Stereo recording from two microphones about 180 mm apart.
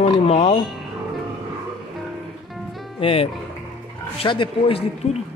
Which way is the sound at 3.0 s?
30° left (ahead or behind).